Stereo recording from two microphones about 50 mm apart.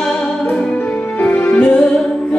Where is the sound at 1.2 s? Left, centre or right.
Left.